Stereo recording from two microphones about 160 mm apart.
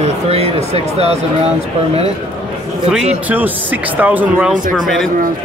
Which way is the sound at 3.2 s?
10° right (ahead or behind).